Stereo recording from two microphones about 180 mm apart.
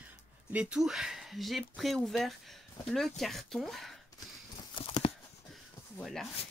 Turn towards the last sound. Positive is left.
turn(degrees=0)  # may be behind; listen again after turning